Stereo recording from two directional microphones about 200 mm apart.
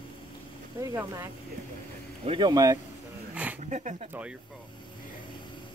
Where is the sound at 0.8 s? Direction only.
15° right (ahead or behind).